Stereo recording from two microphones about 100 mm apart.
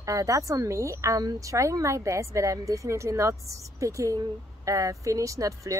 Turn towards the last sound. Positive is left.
turn(degrees=-35)  # may be behind; listen again after turning